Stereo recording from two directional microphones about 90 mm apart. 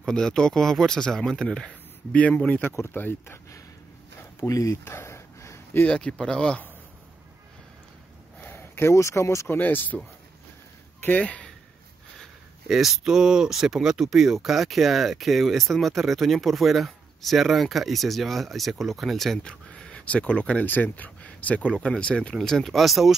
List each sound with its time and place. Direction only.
0.0 s speech: 5° left (ahead or behind); by 3.3 s 25° left (ahead or behind)
4.2 s a sound: 35° left (ahead or behind)
5.9 s speech: 10° left (ahead or behind)
8.4 s speech: 20° left (ahead or behind)
9.6 s speech: 20° left (ahead or behind)
12.2 s speech: 5° right (ahead or behind)